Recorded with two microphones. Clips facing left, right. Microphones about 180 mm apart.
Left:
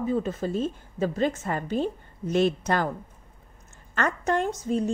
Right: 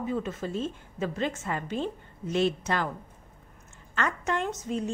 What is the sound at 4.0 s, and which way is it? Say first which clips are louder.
Speech: left 4 dB; 45° left (ahead or behind).